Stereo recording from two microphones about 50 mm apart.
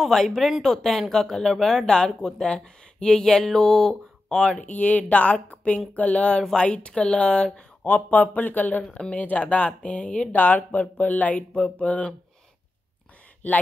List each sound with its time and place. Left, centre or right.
0.0 s speech: centre
4.6 s speech: left
13.4 s speech: left